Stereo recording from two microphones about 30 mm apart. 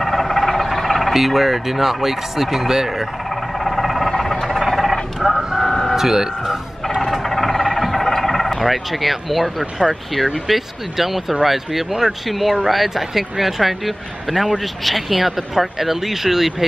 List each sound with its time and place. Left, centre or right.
0.0 s a sound: centre
0.7 s music: centre
1.1 s speech: centre
3.6 s vehicle: centre
4.2 s vehicle: centre
4.5 s a sound: centre
5.2 s vehicle: centre
5.7 s vehicle: centre
5.9 s vehicle: centre
7.0 s vehicle: centre
10.5 s speech: centre
12.3 s speech: centre